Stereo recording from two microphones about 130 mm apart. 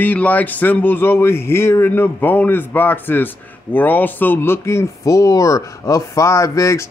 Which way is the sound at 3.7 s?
15° left (ahead or behind).